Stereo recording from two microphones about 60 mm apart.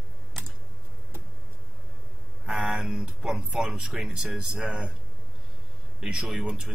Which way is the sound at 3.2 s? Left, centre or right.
Centre.